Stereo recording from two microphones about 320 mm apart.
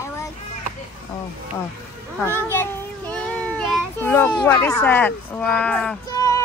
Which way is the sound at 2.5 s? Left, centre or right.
Centre.